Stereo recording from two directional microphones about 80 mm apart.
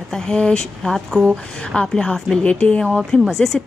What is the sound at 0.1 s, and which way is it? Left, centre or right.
Speech, centre.